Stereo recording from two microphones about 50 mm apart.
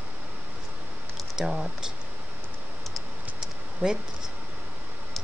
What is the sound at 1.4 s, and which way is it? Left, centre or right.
Speech, centre.